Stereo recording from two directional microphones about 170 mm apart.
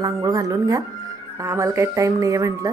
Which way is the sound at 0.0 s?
20° right (ahead or behind).